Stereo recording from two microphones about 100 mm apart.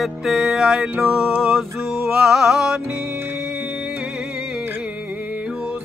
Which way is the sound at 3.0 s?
25° right (ahead or behind).